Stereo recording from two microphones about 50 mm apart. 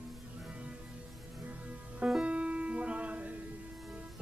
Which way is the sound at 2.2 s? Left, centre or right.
Right.